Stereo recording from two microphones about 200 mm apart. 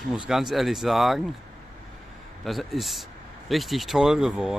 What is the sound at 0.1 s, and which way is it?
Speech, centre (ahead or behind).